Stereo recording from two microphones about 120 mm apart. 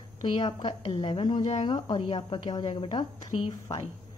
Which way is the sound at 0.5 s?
40° left (ahead or behind).